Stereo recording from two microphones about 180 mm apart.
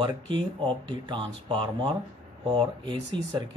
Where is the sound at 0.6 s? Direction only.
25° right (ahead or behind).